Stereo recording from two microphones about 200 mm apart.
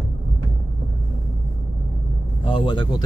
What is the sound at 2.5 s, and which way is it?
Speech, 25° left (ahead or behind).